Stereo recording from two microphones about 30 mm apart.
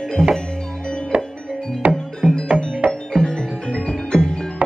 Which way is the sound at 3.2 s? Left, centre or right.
Left.